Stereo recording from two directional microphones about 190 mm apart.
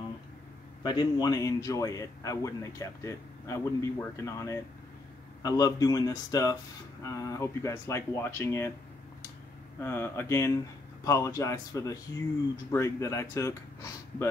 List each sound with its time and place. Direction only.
0.8 s speech: 20° left (ahead or behind)
9.8 s speech: 10° left (ahead or behind)